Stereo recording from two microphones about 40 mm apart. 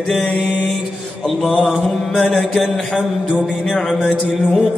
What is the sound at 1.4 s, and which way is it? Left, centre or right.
Mantra, centre.